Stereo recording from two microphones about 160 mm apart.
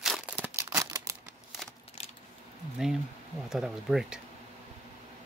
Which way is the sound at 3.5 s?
Centre (ahead or behind).